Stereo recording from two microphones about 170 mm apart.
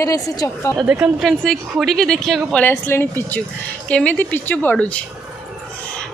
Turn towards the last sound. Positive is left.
turn(degrees=10)  # may be behind; listen again after turning